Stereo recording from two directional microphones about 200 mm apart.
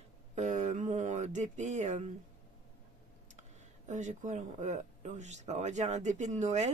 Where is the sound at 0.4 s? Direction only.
40° right (ahead or behind).